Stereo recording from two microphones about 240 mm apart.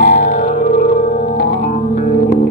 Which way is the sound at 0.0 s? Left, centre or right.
Left.